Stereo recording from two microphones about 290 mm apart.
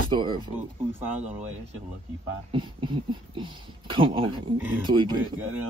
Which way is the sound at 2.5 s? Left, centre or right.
Centre.